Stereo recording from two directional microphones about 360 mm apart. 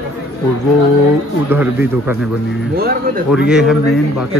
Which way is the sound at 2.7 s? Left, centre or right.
Right.